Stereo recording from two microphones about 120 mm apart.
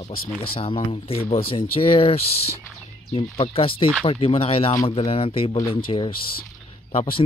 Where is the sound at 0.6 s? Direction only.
50° left (ahead or behind).